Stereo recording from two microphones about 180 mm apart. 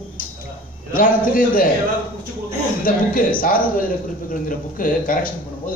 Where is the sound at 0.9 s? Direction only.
50° left (ahead or behind).